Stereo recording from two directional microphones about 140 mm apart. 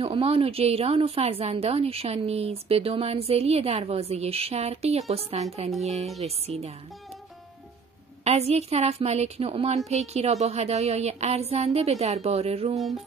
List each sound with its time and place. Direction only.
0.0 s a woman's voice: 45° right (ahead or behind)
8.2 s a woman's voice: 50° right (ahead or behind)